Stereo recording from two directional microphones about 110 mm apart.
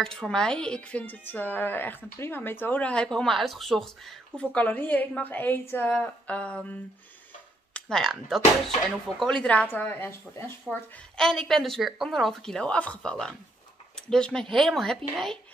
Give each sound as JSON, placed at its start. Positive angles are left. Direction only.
{"t": 0.0, "sound": "speech", "side_deg": 5}
{"t": 11.1, "sound": "speech", "side_deg": 5}